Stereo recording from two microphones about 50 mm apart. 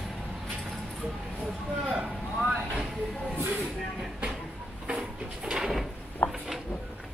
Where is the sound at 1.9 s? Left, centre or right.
Centre.